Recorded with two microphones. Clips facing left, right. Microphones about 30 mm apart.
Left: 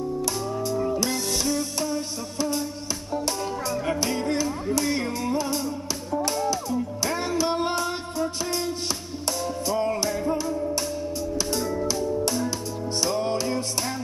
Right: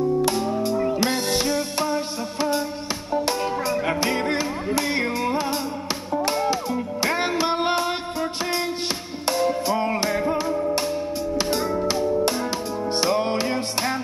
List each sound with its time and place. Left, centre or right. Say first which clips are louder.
0.2 s music: right 5 dB; right